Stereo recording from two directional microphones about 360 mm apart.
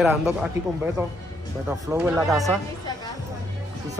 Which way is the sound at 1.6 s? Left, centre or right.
Centre.